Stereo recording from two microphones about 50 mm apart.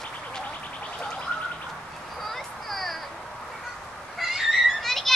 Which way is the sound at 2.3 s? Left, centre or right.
Centre.